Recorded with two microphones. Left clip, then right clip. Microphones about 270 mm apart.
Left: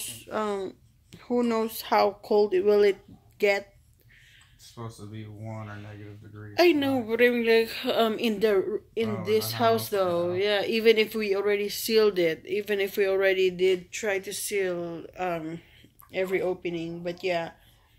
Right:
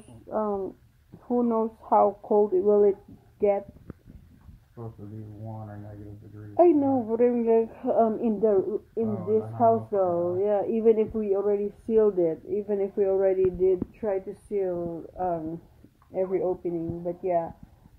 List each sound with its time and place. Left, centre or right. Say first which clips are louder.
0.3 s speech: right 2 dB; left
4.8 s speech: left 1 dB; left
6.5 s speech: right 2 dB; centre